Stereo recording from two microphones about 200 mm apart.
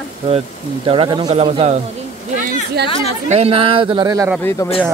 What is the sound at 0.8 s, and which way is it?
Speech, 25° right (ahead or behind).